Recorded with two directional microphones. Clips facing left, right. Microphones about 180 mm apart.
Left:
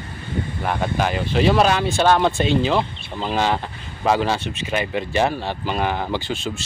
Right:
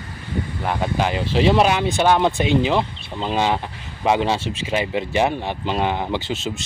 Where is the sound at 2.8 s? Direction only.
5° left (ahead or behind).